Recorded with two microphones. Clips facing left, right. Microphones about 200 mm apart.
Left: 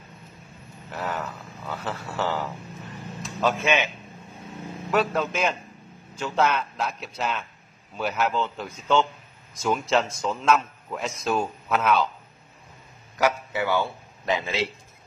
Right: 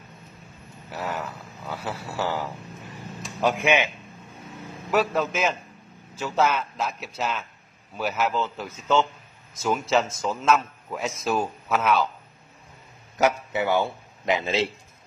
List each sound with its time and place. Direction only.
0.9 s speech: 10° right (ahead or behind)
4.9 s a man's voice: centre (ahead or behind)
13.2 s a man's voice: 20° right (ahead or behind)